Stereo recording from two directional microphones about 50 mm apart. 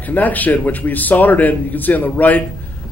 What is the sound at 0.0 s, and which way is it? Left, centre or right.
Speech, left.